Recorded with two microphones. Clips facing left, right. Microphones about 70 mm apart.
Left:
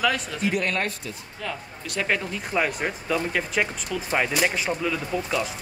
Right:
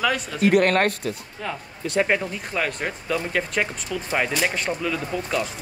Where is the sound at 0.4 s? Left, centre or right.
Right.